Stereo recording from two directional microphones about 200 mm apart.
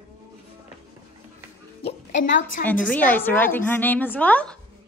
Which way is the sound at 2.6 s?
10° left (ahead or behind).